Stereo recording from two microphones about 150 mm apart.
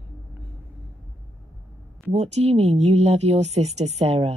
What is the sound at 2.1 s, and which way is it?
Speech, 45° right (ahead or behind).